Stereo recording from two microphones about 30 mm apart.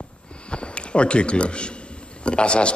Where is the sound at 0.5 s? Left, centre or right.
Left.